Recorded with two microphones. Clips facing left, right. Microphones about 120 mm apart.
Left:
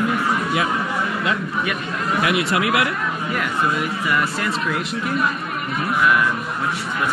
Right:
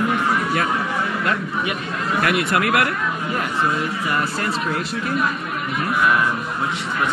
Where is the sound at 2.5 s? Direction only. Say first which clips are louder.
Right 1 dB; 50° right (ahead or behind).